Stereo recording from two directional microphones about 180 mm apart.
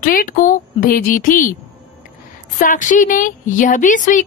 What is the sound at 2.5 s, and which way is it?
Speech, 45° left (ahead or behind).